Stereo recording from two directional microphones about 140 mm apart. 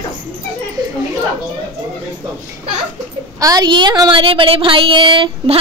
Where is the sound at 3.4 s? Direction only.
30° right (ahead or behind).